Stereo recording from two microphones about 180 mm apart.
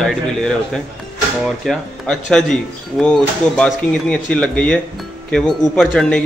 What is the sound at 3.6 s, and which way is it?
Speech, 5° left (ahead or behind).